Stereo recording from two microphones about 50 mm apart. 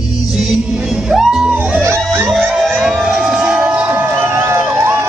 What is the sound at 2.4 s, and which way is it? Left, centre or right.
Emergency vehicle, right.